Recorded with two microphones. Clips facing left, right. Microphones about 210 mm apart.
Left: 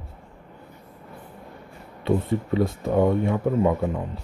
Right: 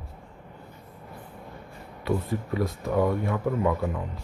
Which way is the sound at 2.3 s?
25° left (ahead or behind).